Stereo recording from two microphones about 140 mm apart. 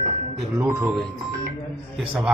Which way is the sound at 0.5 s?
20° right (ahead or behind).